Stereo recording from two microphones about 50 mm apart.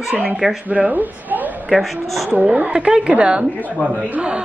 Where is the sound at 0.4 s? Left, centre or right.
Centre.